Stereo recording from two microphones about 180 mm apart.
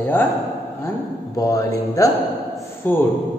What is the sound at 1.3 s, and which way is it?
A man's voice, 20° left (ahead or behind).